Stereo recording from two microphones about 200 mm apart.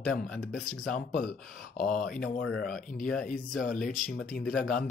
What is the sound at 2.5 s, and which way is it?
Speech, centre (ahead or behind).